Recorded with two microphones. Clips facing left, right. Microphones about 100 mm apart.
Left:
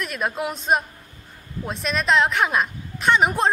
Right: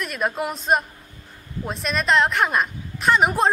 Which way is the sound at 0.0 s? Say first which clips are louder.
Right 1 dB; centre (ahead or behind).